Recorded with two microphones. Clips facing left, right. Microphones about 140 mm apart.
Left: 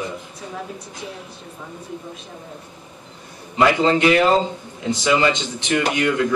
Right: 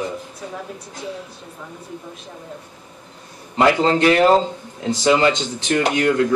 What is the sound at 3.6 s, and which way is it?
Speech, 40° right (ahead or behind).